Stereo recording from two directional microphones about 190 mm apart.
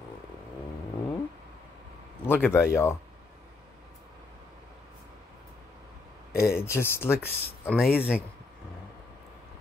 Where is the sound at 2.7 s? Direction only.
15° left (ahead or behind).